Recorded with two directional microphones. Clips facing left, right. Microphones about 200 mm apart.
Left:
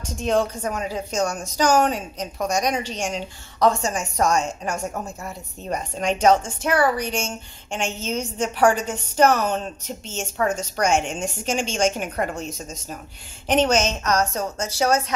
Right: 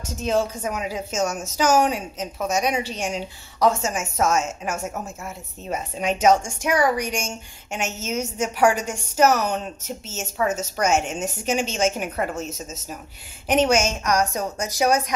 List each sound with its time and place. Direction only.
0.0 s a woman's voice: 5° right (ahead or behind)